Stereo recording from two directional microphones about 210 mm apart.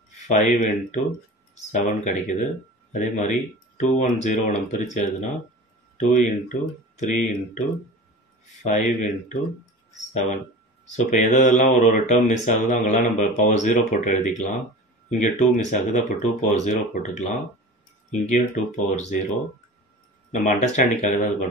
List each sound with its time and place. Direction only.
0.3 s speech: 35° left (ahead or behind)
5.9 s speech: 35° left (ahead or behind)
8.6 s speech: 35° left (ahead or behind)
10.9 s speech: 35° left (ahead or behind)
20.2 s speech: 35° left (ahead or behind)